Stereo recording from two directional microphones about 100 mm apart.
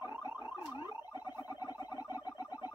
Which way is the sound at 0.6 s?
45° left (ahead or behind).